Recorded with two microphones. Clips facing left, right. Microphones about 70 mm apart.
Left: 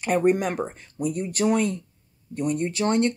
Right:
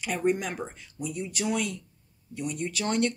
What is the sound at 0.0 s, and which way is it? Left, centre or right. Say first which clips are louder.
Speech: left 6 dB; left.